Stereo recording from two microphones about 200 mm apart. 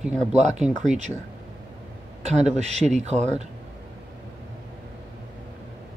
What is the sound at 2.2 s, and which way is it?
Speech, 35° right (ahead or behind).